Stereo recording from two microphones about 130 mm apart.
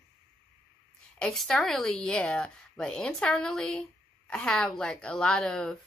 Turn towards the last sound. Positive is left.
turn(degrees=5)  # may be behind; listen again after turning